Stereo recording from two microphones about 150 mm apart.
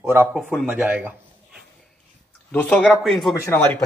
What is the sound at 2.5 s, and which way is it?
Speech, 10° left (ahead or behind).